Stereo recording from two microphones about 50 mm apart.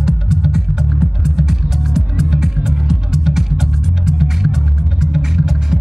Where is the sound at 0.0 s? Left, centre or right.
Centre.